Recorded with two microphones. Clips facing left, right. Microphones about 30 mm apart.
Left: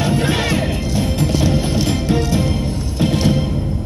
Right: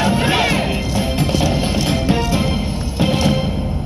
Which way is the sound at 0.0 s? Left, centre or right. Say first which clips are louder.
Right 2 dB; centre.